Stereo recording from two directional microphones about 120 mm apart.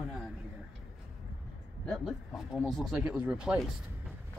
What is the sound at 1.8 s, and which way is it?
Speech, centre (ahead or behind).